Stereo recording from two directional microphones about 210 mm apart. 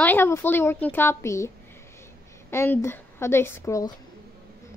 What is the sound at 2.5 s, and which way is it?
A woman's voice, 10° left (ahead or behind).